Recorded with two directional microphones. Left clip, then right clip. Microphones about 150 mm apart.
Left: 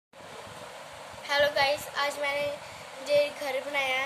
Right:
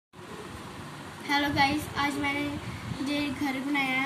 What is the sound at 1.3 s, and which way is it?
A woman's voice, 90° left.